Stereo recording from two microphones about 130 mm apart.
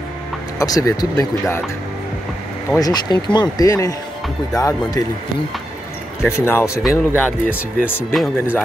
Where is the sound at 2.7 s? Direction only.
30° left (ahead or behind).